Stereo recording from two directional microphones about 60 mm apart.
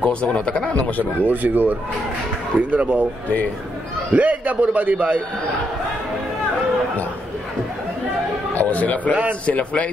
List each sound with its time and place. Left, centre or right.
0.0 s a man's voice: centre
1.2 s a man's voice: right
4.1 s a man's voice: right
8.5 s a man's voice: left